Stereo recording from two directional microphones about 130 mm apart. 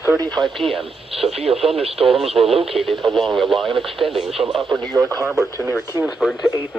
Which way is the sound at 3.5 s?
40° right (ahead or behind).